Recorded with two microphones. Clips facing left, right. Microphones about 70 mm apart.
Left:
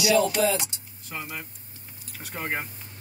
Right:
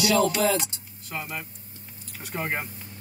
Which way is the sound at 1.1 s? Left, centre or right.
Centre.